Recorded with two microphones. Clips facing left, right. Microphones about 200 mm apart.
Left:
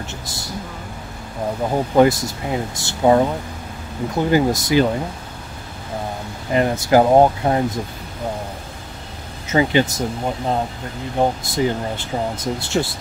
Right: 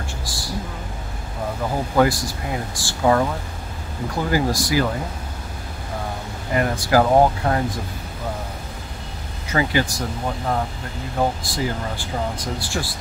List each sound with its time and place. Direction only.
0.2 s a sound: 20° left (ahead or behind)
2.0 s speech: 20° left (ahead or behind)
6.5 s speech: 20° left (ahead or behind)
9.5 s speech: 20° left (ahead or behind)